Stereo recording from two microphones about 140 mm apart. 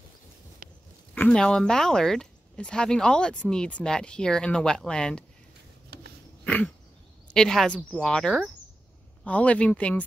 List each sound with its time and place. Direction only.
0.6 s dog: 90° right
1.1 s speech: 10° left (ahead or behind)
6.4 s a sound: 10° left (ahead or behind)
7.3 s speech: 5° left (ahead or behind)